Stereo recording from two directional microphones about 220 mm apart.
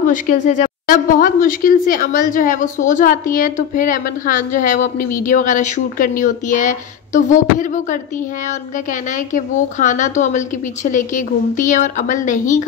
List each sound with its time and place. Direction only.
0.0 s a woman's voice: 35° left (ahead or behind)
9.1 s a woman's voice: 35° left (ahead or behind)